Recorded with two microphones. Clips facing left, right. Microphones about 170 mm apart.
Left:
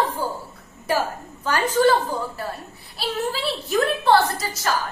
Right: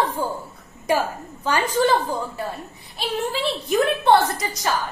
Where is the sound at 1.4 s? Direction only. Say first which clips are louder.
Left 2 dB; 10° right (ahead or behind).